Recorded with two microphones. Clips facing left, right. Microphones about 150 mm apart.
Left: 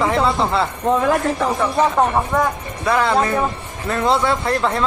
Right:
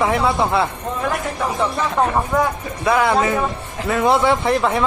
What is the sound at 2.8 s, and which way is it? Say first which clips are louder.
Speech: right 1 dB; 10° right (ahead or behind).